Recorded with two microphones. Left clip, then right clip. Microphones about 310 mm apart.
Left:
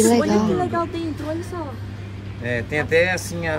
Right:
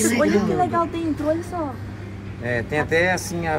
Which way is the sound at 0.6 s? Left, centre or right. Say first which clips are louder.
Right 2 dB; centre.